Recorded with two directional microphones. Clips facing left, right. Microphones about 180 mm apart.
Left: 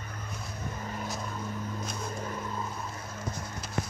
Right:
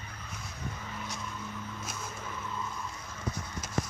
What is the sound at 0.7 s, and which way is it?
Vehicle, 45° left (ahead or behind).